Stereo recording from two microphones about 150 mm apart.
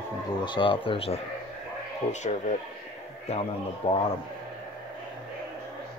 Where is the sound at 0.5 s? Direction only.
35° left (ahead or behind).